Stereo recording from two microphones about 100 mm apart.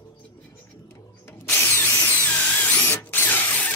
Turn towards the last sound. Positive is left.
turn(degrees=20)  # may be behind; listen again after turning